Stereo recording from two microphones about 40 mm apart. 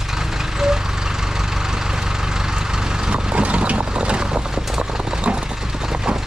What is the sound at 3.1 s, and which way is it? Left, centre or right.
Vehicle, right.